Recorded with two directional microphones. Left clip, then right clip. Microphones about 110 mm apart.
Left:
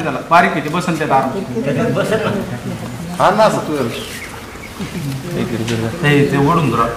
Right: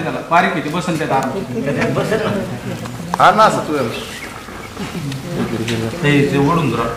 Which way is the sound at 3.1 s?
45° right (ahead or behind).